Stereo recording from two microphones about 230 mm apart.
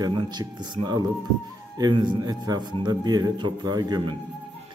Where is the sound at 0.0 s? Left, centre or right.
Centre.